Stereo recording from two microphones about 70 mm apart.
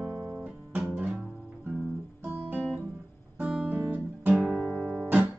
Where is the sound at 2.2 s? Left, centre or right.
Right.